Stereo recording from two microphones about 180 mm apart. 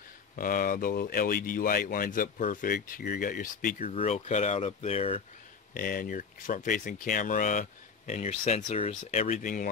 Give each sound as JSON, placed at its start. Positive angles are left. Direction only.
{"t": 0.4, "sound": "speech", "side_deg": 50}
{"t": 3.8, "sound": "speech", "side_deg": 35}
{"t": 5.8, "sound": "speech", "side_deg": 50}